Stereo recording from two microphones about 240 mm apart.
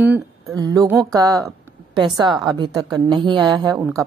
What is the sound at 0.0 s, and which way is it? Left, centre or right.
A woman's voice, centre.